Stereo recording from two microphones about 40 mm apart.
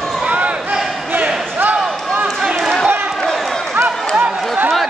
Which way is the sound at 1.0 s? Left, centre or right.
Right.